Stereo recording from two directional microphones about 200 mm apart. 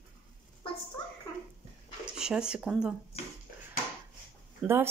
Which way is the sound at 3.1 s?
30° left (ahead or behind).